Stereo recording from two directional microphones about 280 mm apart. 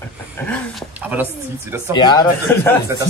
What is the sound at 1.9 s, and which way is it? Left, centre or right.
Speech, centre.